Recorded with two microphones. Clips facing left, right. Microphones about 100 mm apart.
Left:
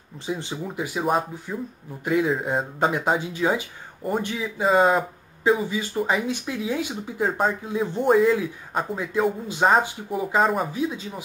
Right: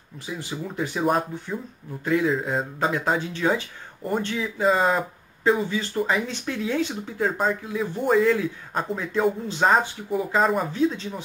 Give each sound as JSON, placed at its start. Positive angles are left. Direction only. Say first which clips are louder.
{"t": 0.3, "sound": "speech", "louder": "left 3 dB", "side_deg": 25}
{"t": 0.7, "sound": "speech", "louder": "right 1 dB", "side_deg": 10}
{"t": 2.0, "sound": "speech", "louder": "even", "side_deg": 15}
{"t": 4.6, "sound": "speech", "louder": "left 2 dB", "side_deg": 0}
{"t": 7.6, "sound": "speech", "louder": "left 2 dB", "side_deg": 25}
{"t": 8.0, "sound": "speech", "louder": "left 1 dB", "side_deg": 10}